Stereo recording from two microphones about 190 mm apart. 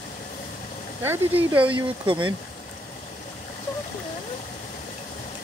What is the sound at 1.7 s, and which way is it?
Speech, 25° right (ahead or behind).